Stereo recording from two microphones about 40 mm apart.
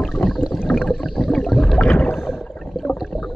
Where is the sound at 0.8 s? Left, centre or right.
Centre.